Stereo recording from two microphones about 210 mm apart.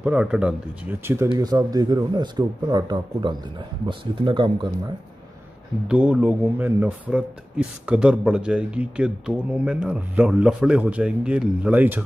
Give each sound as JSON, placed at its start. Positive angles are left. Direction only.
{"t": 0.0, "sound": "speech", "side_deg": -5}
{"t": 5.9, "sound": "speech", "side_deg": -5}